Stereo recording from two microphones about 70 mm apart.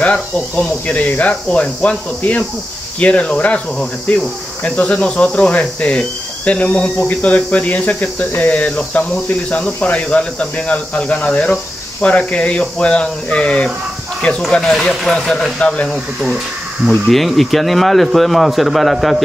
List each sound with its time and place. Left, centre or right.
0.0 s speech: centre
17.1 s a man's voice: centre